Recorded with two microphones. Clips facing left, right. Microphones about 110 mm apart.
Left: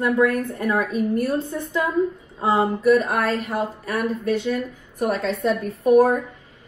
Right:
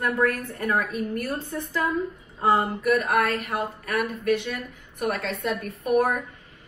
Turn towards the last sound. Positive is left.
turn(degrees=30)  # may be behind; listen again after turning